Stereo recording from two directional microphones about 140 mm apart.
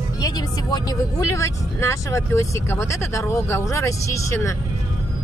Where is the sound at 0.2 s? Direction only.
25° left (ahead or behind).